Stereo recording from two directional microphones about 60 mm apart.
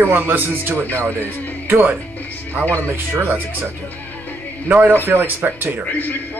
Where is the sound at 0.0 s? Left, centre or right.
Right.